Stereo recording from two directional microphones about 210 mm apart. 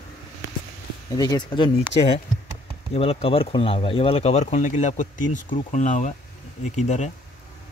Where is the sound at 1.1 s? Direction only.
20° left (ahead or behind).